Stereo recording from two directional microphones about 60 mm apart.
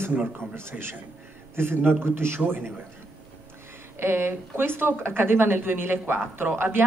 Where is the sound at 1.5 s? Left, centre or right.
Right.